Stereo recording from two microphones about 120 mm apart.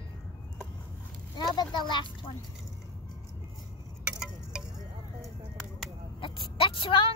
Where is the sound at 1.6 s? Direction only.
40° left (ahead or behind).